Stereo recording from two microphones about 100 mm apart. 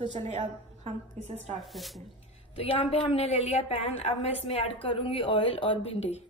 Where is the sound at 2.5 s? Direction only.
70° left (ahead or behind).